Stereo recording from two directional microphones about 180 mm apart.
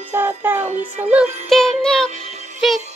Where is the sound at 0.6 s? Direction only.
40° right (ahead or behind).